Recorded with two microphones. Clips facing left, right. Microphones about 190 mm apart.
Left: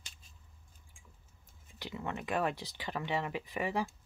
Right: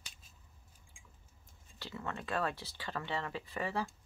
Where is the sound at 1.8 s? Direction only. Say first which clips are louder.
Left 3 dB; 15° left (ahead or behind).